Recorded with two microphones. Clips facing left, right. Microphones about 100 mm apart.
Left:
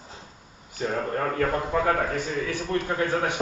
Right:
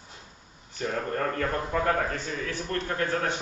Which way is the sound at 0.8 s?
10° left (ahead or behind).